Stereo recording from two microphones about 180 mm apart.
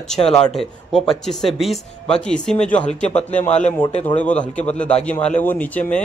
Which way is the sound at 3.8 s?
35° left (ahead or behind).